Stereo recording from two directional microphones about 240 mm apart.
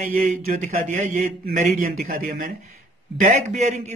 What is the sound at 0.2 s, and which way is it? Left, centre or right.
A man's voice, right.